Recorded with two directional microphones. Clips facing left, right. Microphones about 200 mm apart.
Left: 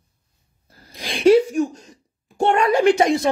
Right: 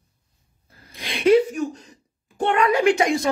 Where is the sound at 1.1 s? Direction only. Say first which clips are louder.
Left 3 dB; 45° left (ahead or behind).